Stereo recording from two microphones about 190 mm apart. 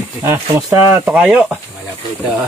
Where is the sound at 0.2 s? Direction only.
15° right (ahead or behind).